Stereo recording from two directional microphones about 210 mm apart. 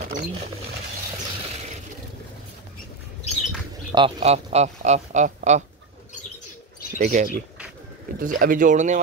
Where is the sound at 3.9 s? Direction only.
25° right (ahead or behind).